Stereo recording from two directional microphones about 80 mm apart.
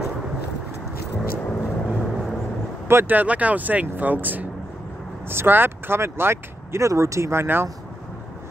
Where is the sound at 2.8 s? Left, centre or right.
Right.